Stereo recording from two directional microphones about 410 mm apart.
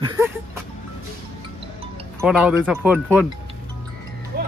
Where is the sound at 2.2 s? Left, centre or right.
Centre.